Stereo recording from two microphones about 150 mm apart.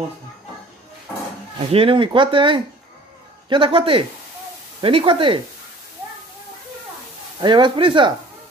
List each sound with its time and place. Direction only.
1.7 s speech: 40° right (ahead or behind)
7.3 s speech: 30° right (ahead or behind)